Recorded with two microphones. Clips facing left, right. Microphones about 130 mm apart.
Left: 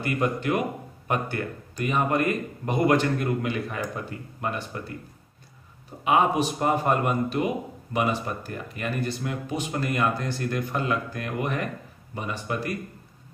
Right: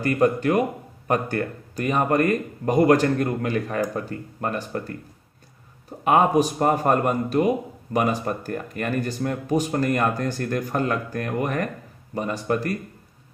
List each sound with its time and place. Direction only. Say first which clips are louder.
0.0 s speech: right 6 dB; 40° right (ahead or behind)
6.0 s a man's voice: right 4 dB; 45° right (ahead or behind)